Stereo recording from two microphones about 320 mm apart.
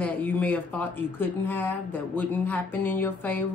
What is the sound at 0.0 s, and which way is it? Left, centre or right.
Speech, centre.